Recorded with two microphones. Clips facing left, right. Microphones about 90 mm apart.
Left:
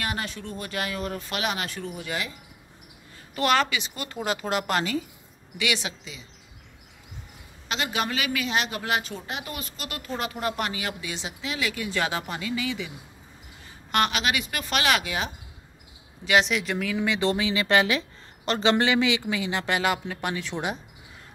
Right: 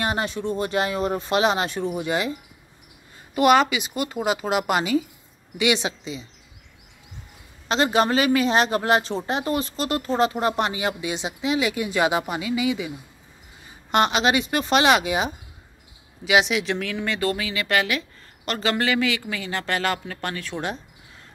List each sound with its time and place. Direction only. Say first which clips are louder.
0.0 s a man's voice: right 7 dB; 25° right (ahead or behind)
3.3 s speech: right 6 dB; 15° right (ahead or behind)
5.6 s a man's voice: right 6 dB; 25° right (ahead or behind)
7.6 s a man's voice: right 8 dB; 35° right (ahead or behind); by 12.9 s 15° right (ahead or behind)
13.9 s a man's voice: right 5 dB; 25° right (ahead or behind)
16.3 s speech: right 2 dB; 5° right (ahead or behind)
16.7 s speech: left 1 dB; 10° left (ahead or behind)
17.2 s speech: left 1 dB; 25° left (ahead or behind)